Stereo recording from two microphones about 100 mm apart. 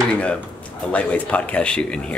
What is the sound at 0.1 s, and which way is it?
Speech, 10° left (ahead or behind).